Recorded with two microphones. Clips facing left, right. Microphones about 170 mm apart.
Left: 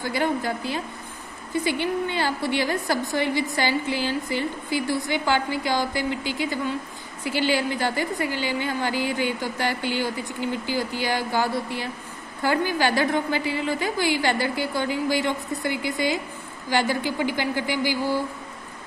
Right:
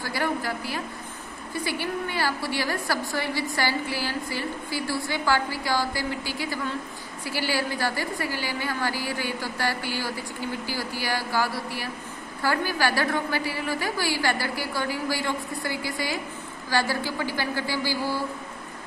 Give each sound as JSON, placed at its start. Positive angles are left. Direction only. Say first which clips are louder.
{"t": 0.0, "sound": "a woman's voice", "louder": "left 3 dB", "side_deg": 20}